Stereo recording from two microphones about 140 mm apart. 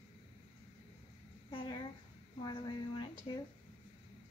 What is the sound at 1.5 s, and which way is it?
Speech, 30° left (ahead or behind).